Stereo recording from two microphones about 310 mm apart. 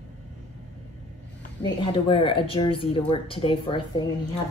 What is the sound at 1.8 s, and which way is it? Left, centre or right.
A woman's voice, centre.